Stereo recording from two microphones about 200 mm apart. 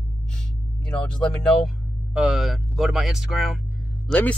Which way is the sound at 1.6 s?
5° right (ahead or behind).